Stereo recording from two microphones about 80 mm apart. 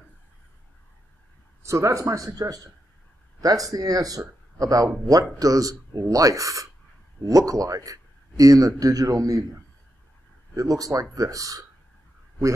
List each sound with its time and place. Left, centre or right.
1.6 s speech: right
10.5 s speech: right